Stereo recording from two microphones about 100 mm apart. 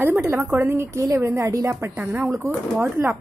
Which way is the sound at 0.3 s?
25° right (ahead or behind).